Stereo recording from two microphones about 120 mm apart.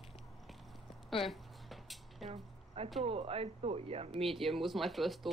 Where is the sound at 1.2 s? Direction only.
Centre (ahead or behind).